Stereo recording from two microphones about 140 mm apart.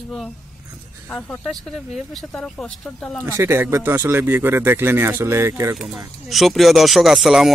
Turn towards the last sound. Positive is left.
turn(degrees=0)  # may be behind; listen again after turning